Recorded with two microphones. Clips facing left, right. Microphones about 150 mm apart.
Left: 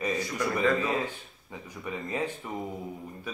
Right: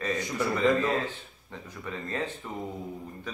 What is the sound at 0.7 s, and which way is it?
Speech, 10° left (ahead or behind).